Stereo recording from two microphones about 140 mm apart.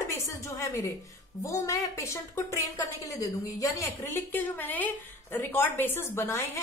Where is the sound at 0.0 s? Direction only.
20° left (ahead or behind).